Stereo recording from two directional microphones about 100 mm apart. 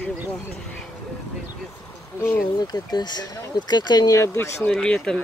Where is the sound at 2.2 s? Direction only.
25° left (ahead or behind).